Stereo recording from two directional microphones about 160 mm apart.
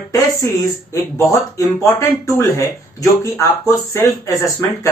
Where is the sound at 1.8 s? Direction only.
20° left (ahead or behind).